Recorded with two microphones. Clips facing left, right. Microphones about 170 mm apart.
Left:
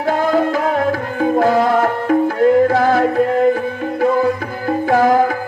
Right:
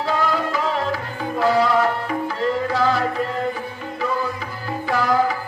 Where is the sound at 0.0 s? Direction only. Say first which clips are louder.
Left 6 dB; 50° left (ahead or behind).